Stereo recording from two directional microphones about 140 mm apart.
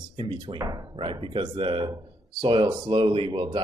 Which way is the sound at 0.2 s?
35° right (ahead or behind).